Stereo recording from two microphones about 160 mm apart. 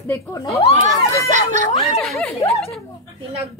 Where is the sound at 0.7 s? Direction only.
50° right (ahead or behind).